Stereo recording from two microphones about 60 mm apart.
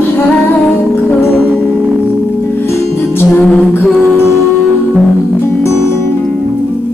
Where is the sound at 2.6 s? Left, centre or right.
Left.